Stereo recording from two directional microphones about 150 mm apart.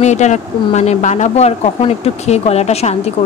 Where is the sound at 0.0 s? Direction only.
50° left (ahead or behind).